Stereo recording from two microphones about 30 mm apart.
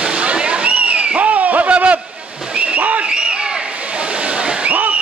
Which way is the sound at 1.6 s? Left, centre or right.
Right.